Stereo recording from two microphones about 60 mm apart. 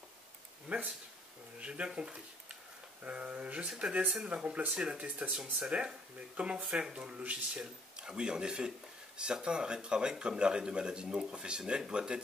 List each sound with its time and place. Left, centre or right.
0.7 s speech: right
3.6 s speech: centre
4.3 s speech: right
5.0 s speech: right